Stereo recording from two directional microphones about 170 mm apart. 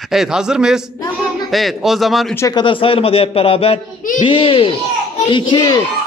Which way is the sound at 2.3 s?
20° left (ahead or behind).